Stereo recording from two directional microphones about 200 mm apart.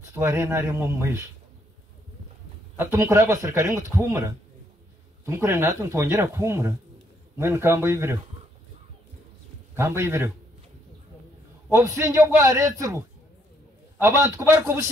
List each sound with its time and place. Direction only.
0.1 s speech: 10° right (ahead or behind)
2.8 s speech: 15° right (ahead or behind)
9.8 s speech: 15° right (ahead or behind)
11.7 s speech: 15° right (ahead or behind)